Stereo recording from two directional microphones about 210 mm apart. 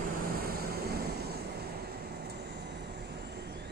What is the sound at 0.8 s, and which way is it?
Vehicle, 50° right (ahead or behind).